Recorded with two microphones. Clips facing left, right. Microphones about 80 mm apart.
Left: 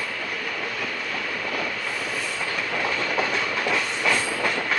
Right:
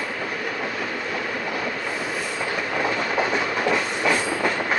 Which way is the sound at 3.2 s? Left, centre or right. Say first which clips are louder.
Right 2 dB; centre.